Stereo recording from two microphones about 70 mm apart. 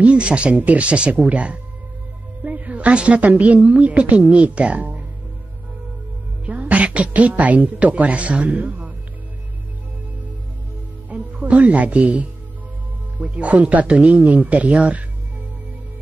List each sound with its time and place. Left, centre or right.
0.0 s a woman's voice: centre
6.4 s a woman's voice: centre
11.1 s music: centre
13.2 s speech: right